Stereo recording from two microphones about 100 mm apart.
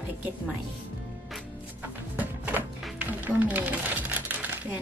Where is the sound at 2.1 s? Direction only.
15° right (ahead or behind).